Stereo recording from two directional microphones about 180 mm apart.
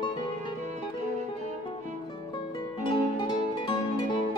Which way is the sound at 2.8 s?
25° left (ahead or behind).